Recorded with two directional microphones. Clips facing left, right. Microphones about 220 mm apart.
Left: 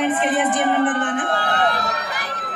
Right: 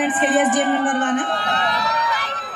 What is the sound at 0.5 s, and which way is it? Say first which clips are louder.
A man's voice: even; 50° left (ahead or behind).